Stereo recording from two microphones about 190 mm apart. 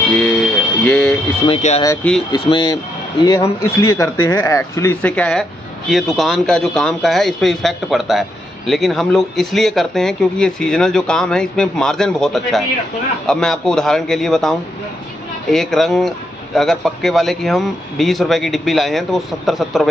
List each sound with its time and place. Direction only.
0.1 s a sound: 5° left (ahead or behind)
1.5 s speech: 35° left (ahead or behind)
2.3 s a man's voice: 25° left (ahead or behind); by 19.9 s centre (ahead or behind)